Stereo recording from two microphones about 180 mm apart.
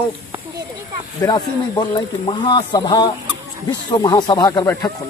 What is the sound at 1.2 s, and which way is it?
Speech, 15° left (ahead or behind).